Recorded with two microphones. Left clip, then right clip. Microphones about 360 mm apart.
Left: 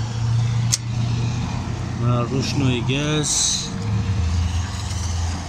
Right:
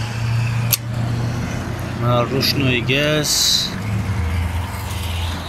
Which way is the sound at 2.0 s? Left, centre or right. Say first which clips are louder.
Right 6 dB; right.